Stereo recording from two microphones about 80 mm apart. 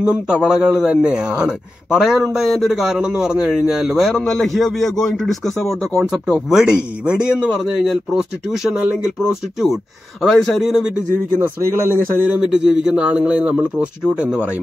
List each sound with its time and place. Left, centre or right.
0.0 s a man's voice: centre
6.0 s a man's voice: centre
11.6 s speech: right
12.4 s a man's voice: centre